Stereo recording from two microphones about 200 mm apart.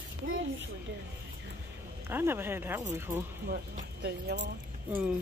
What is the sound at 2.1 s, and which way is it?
Speech, 10° right (ahead or behind).